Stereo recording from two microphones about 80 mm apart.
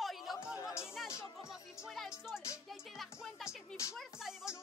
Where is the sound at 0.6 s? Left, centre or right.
Left.